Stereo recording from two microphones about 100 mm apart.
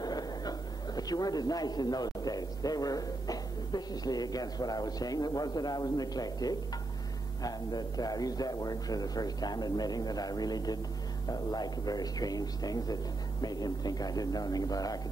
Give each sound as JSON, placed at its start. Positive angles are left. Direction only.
{"t": 0.0, "sound": "a man's voice", "side_deg": 40}